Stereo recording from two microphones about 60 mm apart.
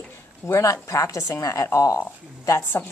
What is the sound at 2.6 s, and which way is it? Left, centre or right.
Speech, left.